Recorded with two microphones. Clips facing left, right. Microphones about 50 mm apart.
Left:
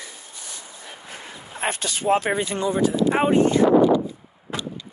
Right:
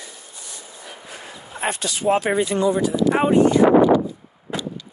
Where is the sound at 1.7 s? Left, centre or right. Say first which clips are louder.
Right 3 dB; left.